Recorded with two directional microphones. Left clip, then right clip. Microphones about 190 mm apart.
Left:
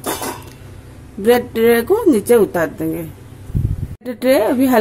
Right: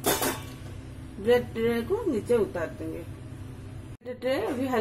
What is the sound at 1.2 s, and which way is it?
A woman's voice, 50° left (ahead or behind).